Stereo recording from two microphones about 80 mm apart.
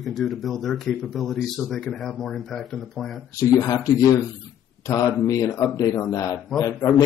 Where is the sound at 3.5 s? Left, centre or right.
Left.